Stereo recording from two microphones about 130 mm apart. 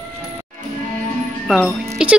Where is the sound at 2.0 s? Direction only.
5° right (ahead or behind).